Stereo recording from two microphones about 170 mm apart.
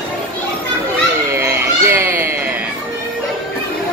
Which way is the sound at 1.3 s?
15° right (ahead or behind).